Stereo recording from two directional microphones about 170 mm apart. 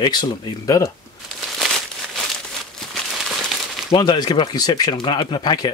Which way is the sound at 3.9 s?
25° left (ahead or behind).